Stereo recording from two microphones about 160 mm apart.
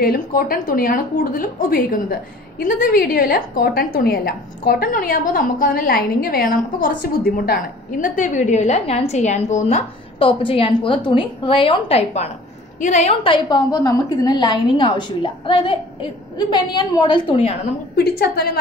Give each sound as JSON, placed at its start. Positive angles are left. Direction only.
{"t": 0.0, "sound": "a woman's voice", "side_deg": 70}
{"t": 10.1, "sound": "a woman's voice", "side_deg": 35}
{"t": 17.9, "sound": "a woman's voice", "side_deg": 75}